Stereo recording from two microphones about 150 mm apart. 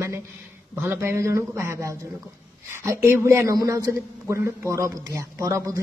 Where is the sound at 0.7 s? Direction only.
15° right (ahead or behind).